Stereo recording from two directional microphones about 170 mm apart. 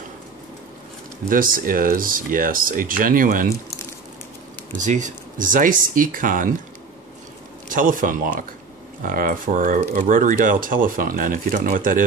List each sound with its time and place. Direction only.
1.3 s speech: 55° right (ahead or behind)
4.7 s speech: 45° right (ahead or behind)
7.7 s speech: 50° right (ahead or behind)